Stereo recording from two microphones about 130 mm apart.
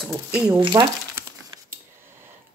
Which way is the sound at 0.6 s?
35° right (ahead or behind).